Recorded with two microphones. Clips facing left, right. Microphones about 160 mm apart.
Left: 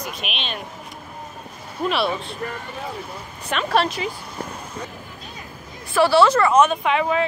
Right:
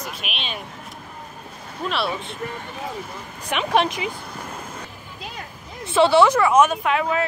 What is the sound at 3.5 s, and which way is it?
Speech, 15° right (ahead or behind).